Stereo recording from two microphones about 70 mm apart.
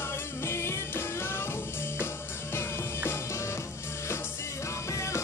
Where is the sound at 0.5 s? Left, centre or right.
Left.